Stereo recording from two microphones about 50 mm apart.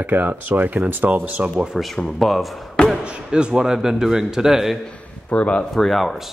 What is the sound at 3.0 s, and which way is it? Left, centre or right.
A man's voice, right.